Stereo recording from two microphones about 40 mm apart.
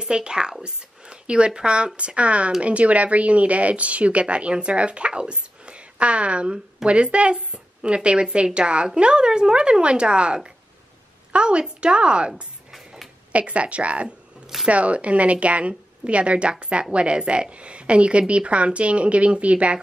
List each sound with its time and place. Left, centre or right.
0.0 s a woman's voice: right